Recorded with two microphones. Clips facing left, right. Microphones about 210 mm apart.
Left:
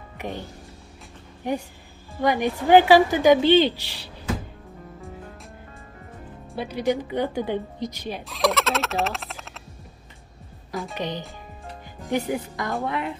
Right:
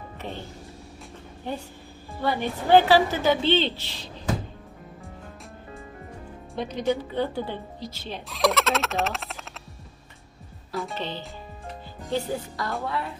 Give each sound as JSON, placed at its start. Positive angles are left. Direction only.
{"t": 0.2, "sound": "speech", "side_deg": 15}
{"t": 2.2, "sound": "a woman's voice", "side_deg": 15}
{"t": 6.5, "sound": "a woman's voice", "side_deg": 10}
{"t": 8.3, "sound": "fowl", "side_deg": 0}
{"t": 11.0, "sound": "a woman's voice", "side_deg": 15}